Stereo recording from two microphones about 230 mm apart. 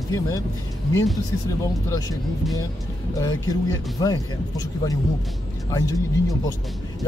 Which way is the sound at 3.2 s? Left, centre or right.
Centre.